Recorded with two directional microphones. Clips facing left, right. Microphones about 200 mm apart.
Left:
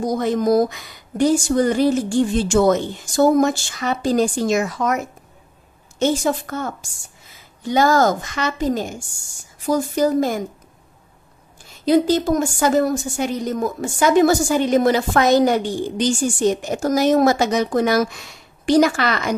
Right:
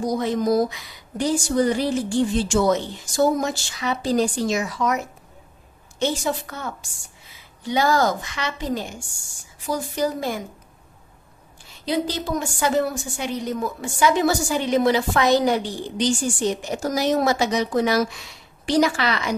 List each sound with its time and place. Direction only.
0.0 s a woman's voice: 50° left (ahead or behind)
11.8 s a woman's voice: 45° left (ahead or behind)